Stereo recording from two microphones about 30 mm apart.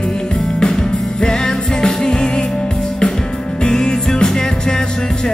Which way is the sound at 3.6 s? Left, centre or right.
Left.